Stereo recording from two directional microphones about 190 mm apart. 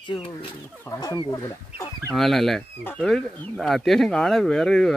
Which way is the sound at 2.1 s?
Centre (ahead or behind).